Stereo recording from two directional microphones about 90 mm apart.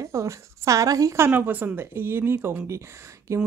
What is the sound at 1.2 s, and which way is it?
Speech, 20° right (ahead or behind).